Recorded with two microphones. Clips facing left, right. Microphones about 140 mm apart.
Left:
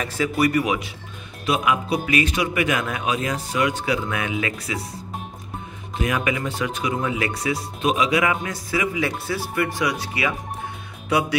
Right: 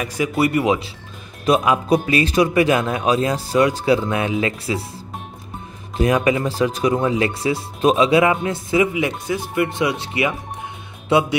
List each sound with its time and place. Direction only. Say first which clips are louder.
0.0 s speech: right 2 dB; 15° right (ahead or behind)
0.4 s speech: right 3 dB; 25° right (ahead or behind)
1.4 s a man's voice: right 5 dB; 35° right (ahead or behind)
5.9 s speech: right 6 dB; 35° right (ahead or behind)